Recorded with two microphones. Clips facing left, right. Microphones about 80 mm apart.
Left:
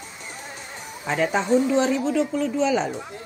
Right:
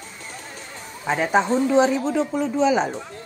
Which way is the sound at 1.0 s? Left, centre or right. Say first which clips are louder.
Right 2 dB; centre.